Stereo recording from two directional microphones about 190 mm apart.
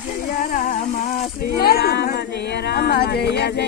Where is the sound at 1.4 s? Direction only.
55° left (ahead or behind).